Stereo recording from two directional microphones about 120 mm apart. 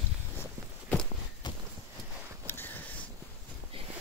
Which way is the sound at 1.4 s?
35° left (ahead or behind).